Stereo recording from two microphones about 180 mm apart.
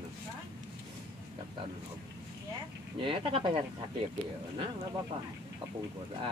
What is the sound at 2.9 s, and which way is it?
Speech, 30° right (ahead or behind).